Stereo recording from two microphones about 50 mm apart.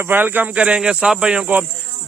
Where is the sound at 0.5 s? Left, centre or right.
Centre.